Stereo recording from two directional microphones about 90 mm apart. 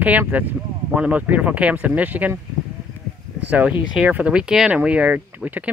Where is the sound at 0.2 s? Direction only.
20° right (ahead or behind).